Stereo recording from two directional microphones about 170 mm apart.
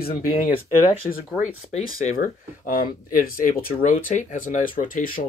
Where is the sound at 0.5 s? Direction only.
35° left (ahead or behind).